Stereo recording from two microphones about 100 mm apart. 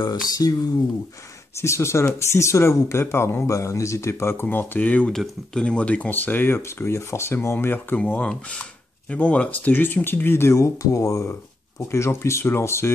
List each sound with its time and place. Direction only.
0.0 s speech: 40° left (ahead or behind)
1.6 s speech: 25° left (ahead or behind)
5.1 s speech: 5° left (ahead or behind); by 12.9 s 25° left (ahead or behind)